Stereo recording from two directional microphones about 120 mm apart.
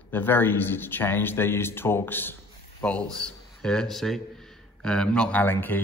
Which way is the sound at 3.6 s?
5° left (ahead or behind).